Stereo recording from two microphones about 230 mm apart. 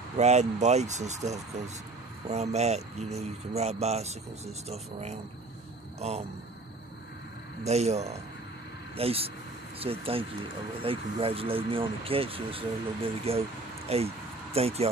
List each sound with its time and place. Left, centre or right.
0.2 s speech: right
7.6 s speech: right